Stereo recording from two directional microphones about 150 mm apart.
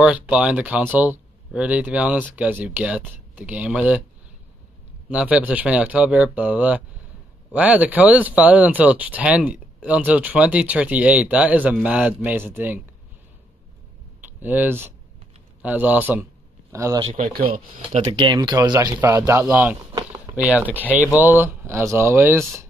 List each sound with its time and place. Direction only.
0.0 s speech: 10° right (ahead or behind)
5.1 s speech: 10° right (ahead or behind)
14.4 s speech: 10° right (ahead or behind)
17.5 s speech: 45° right (ahead or behind)
18.2 s speech: 30° right (ahead or behind)